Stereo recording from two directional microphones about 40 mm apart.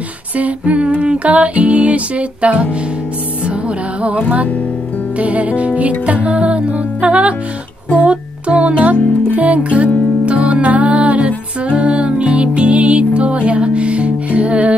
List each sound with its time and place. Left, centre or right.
0.4 s humming: right
3.4 s music: right
5.2 s humming: right
8.0 s music: right